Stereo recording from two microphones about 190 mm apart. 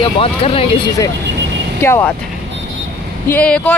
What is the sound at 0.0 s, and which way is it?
Speech, 30° left (ahead or behind).